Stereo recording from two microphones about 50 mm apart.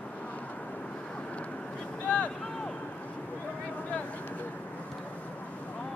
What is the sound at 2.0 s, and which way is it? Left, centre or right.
Vehicle, left.